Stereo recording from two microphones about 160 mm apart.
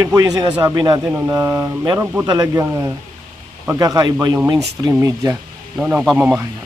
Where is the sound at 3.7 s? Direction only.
20° right (ahead or behind).